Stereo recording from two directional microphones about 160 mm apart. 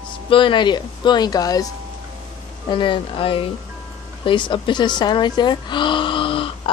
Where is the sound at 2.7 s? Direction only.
30° left (ahead or behind).